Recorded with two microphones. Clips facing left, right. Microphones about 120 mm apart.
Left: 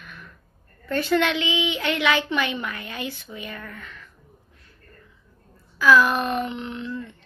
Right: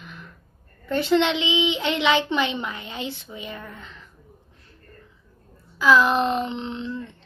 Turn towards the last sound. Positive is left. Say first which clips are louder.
# right 1 dB
turn(degrees=-30)  # may be behind; listen again after turning